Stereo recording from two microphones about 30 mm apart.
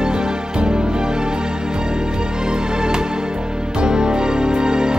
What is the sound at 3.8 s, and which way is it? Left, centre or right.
Music, right.